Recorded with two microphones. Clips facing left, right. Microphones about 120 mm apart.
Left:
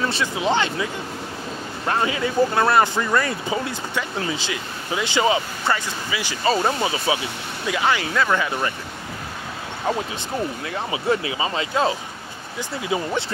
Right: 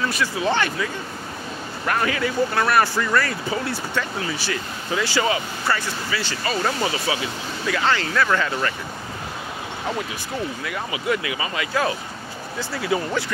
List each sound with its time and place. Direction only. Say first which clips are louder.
0.1 s speech: left 1 dB; 20° left (ahead or behind)
1.9 s speech: even; 20° left (ahead or behind)
6.4 s speech: left 4 dB; 25° left (ahead or behind)
10.6 s speech: left 2 dB; 30° left (ahead or behind)